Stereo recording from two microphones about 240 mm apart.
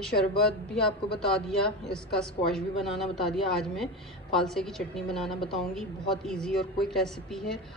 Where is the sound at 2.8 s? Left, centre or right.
Centre.